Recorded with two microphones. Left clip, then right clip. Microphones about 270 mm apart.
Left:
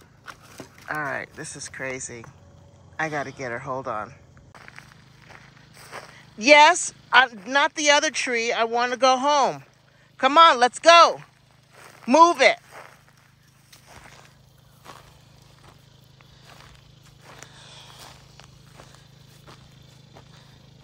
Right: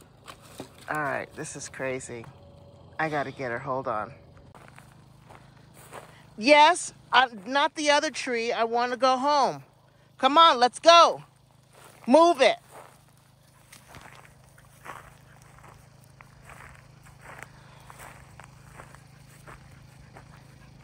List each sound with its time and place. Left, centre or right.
0.8 s speech: centre
5.9 s speech: centre
11.7 s walk: centre
14.8 s a sound: centre
16.2 s walk: centre